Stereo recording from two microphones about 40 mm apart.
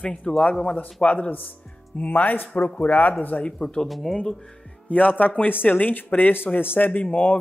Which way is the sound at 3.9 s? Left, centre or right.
Centre.